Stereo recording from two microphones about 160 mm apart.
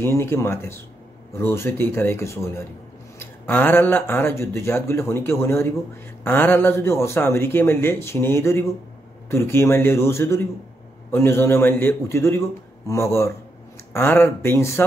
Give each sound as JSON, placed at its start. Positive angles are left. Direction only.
{"t": 0.0, "sound": "speech", "side_deg": 15}